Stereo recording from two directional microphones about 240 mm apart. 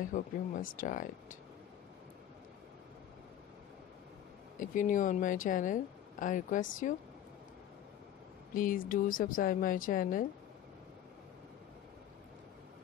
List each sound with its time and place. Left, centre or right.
0.1 s speech: left
4.6 s speech: left
8.5 s speech: left